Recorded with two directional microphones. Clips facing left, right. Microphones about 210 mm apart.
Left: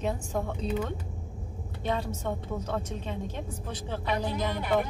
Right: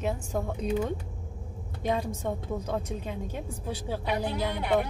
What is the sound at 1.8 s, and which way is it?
A woman's voice, 15° right (ahead or behind).